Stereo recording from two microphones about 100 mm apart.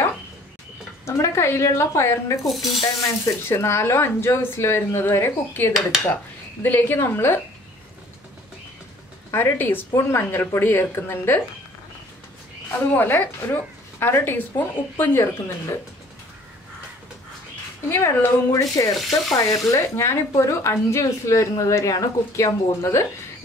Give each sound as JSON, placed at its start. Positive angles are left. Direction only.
{"t": 1.0, "sound": "speech", "side_deg": 30}
{"t": 2.4, "sound": "speech", "side_deg": 0}
{"t": 2.8, "sound": "speech", "side_deg": 35}
{"t": 9.3, "sound": "speech", "side_deg": 20}
{"t": 12.7, "sound": "speech", "side_deg": 20}
{"t": 17.8, "sound": "speech", "side_deg": 25}
{"t": 18.6, "sound": "speech", "side_deg": 35}
{"t": 18.9, "sound": "speech", "side_deg": 0}
{"t": 19.3, "sound": "speech", "side_deg": 30}